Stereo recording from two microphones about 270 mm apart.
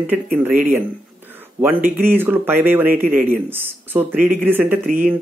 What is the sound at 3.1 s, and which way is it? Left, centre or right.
Speech, right.